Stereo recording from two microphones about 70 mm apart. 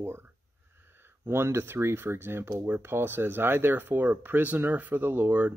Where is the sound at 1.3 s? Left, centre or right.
Right.